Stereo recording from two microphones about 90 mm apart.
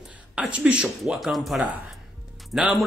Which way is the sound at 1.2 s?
Centre (ahead or behind).